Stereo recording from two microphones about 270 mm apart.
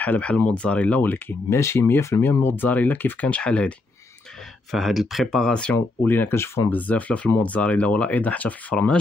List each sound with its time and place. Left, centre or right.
0.0 s speech: centre